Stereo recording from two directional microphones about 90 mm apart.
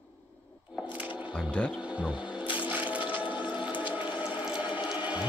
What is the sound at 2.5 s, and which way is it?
Squish, 20° right (ahead or behind).